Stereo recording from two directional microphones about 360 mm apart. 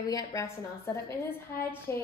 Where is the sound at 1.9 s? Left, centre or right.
Centre.